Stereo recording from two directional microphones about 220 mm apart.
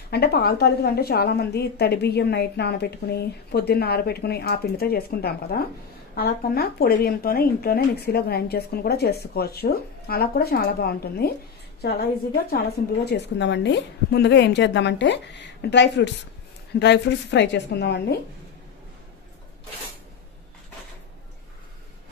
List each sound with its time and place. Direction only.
0.1 s a woman's voice: 45° left (ahead or behind)